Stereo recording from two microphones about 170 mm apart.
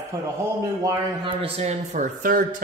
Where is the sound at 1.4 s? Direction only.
40° right (ahead or behind).